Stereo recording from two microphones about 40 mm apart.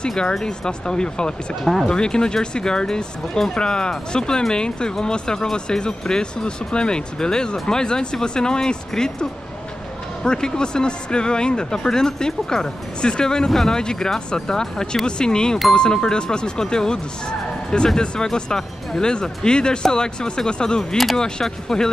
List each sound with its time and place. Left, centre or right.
0.2 s speech: centre
1.5 s speech: centre
1.9 s speech: centre
13.5 s speech: centre
13.7 s speech: centre